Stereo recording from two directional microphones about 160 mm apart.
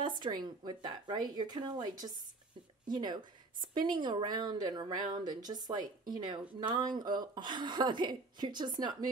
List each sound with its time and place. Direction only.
0.2 s a woman's voice: 25° right (ahead or behind)